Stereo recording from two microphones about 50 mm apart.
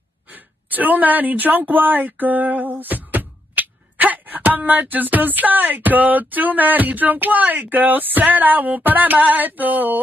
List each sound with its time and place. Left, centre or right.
0.3 s speech: right